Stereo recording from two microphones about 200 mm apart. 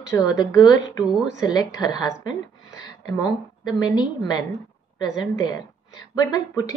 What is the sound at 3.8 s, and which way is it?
A woman's voice, 20° left (ahead or behind).